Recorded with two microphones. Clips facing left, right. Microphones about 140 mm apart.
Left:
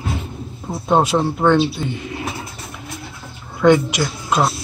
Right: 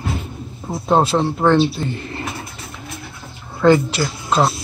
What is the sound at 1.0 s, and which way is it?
Speech, 10° left (ahead or behind).